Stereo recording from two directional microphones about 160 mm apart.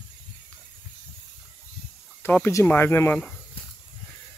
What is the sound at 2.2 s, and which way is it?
Speech, 15° left (ahead or behind).